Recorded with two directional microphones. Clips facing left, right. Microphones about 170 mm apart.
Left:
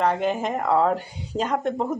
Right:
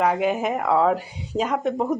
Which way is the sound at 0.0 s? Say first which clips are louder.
Right 2 dB; 5° right (ahead or behind).